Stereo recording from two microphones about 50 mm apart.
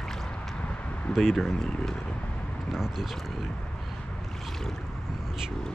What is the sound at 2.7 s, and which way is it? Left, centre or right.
Speech, centre.